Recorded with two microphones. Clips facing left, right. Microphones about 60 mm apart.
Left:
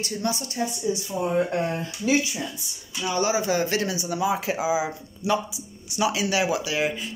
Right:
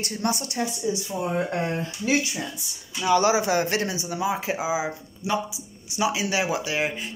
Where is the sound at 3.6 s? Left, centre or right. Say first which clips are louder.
Even; right.